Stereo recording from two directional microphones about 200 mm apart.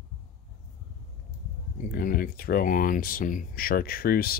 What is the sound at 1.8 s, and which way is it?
Speech, 45° left (ahead or behind).